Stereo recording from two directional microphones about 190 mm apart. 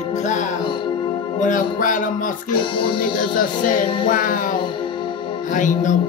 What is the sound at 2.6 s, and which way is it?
Music, 25° left (ahead or behind).